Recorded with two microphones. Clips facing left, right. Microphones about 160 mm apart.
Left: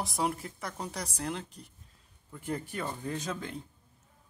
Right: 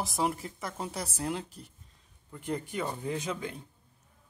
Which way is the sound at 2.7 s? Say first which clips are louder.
Right 2 dB; 10° right (ahead or behind).